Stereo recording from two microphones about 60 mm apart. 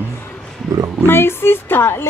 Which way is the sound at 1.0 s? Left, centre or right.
Left.